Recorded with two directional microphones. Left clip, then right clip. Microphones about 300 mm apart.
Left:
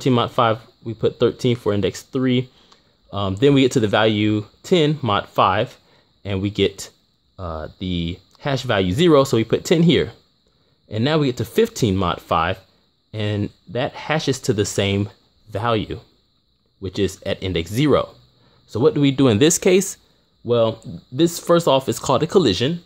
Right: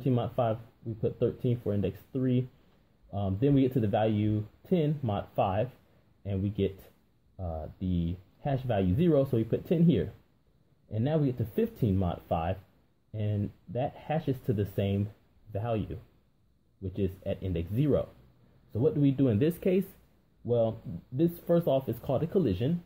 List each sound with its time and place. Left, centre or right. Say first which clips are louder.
0.0 s speech: left 12 dB; left